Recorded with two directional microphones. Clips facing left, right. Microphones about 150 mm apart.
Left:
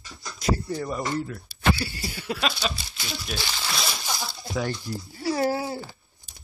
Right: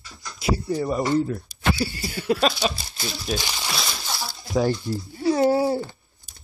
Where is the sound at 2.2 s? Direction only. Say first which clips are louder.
Right 7 dB; 45° right (ahead or behind).